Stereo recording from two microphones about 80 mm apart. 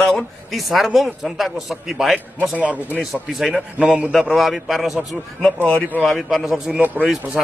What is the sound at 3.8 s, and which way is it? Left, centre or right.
Speech, centre.